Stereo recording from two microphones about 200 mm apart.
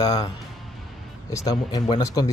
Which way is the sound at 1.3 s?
15° left (ahead or behind).